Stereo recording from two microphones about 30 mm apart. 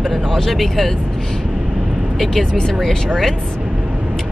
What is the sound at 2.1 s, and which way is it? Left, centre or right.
Speech, centre.